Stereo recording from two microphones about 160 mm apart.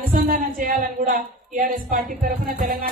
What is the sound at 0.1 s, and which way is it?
A woman's voice, 60° right (ahead or behind).